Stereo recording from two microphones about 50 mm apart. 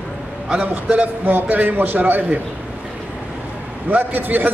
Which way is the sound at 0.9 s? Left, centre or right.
Right.